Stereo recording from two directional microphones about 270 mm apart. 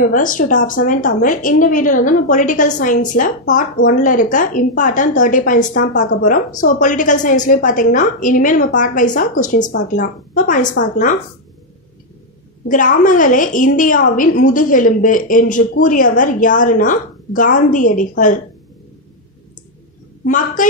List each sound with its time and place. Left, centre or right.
0.1 s a woman's voice: left
12.6 s a woman's voice: left
20.2 s a woman's voice: left